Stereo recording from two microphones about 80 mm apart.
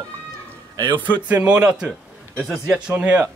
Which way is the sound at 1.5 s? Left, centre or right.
Centre.